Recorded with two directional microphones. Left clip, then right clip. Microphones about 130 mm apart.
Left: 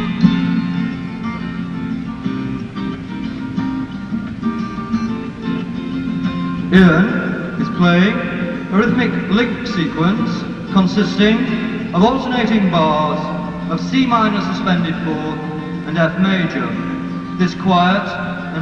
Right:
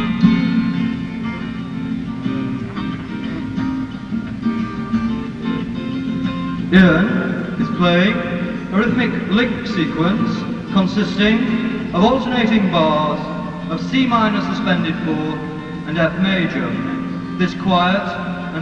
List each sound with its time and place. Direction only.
0.0 s music: 40° right (ahead or behind)
6.2 s music: 40° right (ahead or behind)
7.6 s a man's voice: 30° right (ahead or behind)
13.7 s a man's voice: 30° right (ahead or behind)